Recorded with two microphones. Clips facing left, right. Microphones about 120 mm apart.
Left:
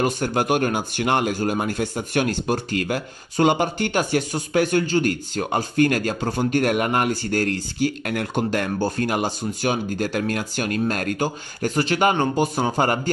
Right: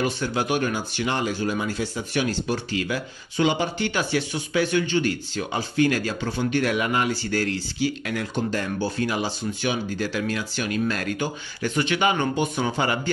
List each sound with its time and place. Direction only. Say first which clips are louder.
0.0 s speech: left 3 dB; 50° left (ahead or behind)